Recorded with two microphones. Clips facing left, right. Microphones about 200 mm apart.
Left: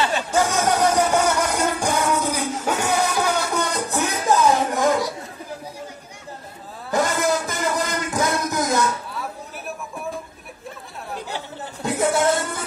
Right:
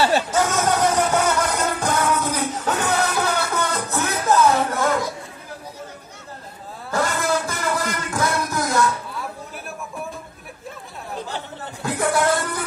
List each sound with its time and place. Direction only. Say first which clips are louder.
0.3 s music: even; 10° left (ahead or behind)
6.9 s a sound: left 2 dB; 20° left (ahead or behind)
11.8 s music: left 1 dB; 20° left (ahead or behind)